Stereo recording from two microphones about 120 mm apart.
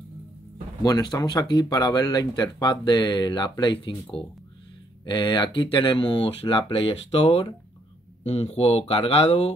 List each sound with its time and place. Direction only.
0.8 s speech: 35° left (ahead or behind); by 9.5 s 55° left (ahead or behind)